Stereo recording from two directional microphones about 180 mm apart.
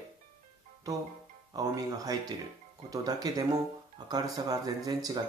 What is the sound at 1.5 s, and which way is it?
Speech, 20° right (ahead or behind).